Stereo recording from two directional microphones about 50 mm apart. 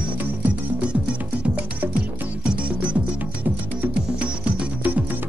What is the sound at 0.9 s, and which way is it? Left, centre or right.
Music, right.